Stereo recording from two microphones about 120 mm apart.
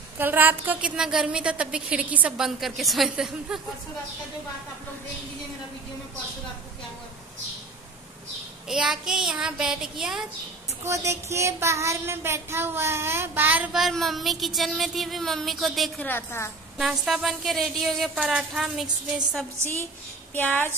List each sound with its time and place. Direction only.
0.2 s a woman's voice: 15° right (ahead or behind)
8.6 s speech: 5° right (ahead or behind)
10.9 s a sound: 25° right (ahead or behind)
13.7 s speech: centre (ahead or behind)
16.0 s a woman's voice: 15° left (ahead or behind)
16.7 s speech: 5° right (ahead or behind)
20.3 s a woman's voice: 15° left (ahead or behind)